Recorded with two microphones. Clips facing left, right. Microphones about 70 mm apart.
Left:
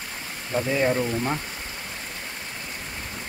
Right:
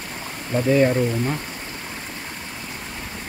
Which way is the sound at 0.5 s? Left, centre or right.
Centre.